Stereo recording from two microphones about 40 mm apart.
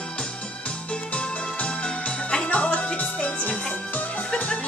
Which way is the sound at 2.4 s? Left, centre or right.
Left.